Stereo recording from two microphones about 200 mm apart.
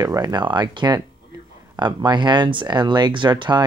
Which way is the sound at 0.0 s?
20° right (ahead or behind).